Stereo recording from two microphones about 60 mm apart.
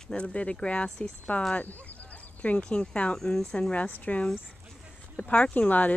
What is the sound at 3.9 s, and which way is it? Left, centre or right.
Speech, left.